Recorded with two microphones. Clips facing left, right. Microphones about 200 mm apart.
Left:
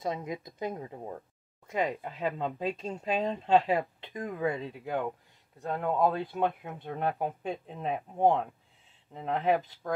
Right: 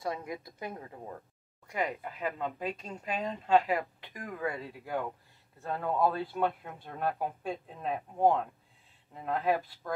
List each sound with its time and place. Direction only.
0.0 s speech: 20° left (ahead or behind)